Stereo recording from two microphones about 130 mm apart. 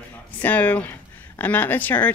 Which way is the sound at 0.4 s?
15° left (ahead or behind).